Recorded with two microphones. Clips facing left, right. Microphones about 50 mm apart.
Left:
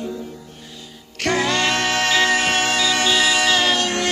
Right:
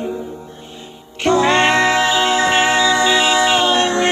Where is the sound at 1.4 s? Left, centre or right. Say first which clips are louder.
Right 7 dB; right.